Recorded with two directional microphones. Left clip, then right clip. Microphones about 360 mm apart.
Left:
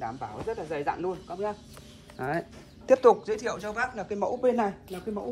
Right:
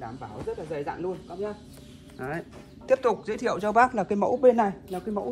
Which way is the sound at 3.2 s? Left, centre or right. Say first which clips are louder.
Right 4 dB; centre.